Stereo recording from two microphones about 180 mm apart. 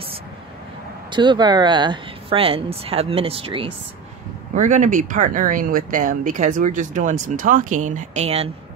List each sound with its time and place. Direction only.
1.1 s speech: 25° right (ahead or behind)
4.6 s speech: 45° right (ahead or behind)